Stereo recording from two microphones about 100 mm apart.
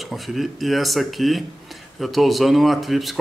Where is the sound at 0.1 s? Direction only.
Centre (ahead or behind).